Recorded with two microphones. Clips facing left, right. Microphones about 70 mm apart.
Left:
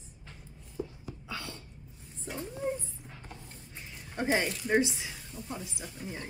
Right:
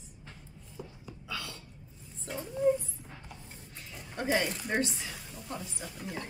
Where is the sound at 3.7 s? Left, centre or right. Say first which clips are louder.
Left 2 dB; left.